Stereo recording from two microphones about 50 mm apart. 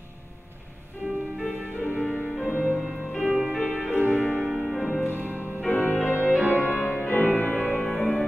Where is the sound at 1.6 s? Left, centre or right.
Left.